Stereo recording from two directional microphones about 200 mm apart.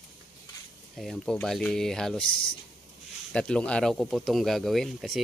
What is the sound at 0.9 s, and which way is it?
Speech, centre (ahead or behind).